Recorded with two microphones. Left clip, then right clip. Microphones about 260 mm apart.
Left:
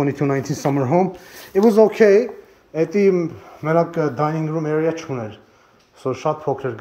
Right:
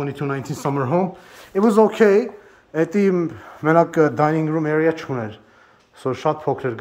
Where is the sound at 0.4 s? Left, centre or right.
Centre.